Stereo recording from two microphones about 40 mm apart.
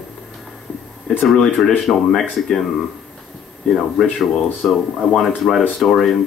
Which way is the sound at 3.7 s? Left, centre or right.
Centre.